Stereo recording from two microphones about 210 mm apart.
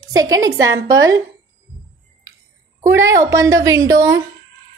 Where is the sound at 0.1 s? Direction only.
15° right (ahead or behind).